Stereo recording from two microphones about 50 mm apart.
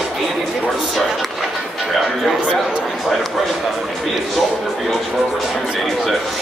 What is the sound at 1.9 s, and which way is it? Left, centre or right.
Speech, centre.